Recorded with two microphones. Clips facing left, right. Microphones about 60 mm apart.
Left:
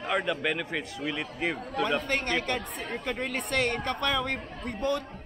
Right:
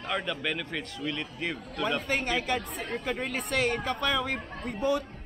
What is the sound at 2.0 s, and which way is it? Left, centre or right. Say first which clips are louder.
A woman's voice: even; centre.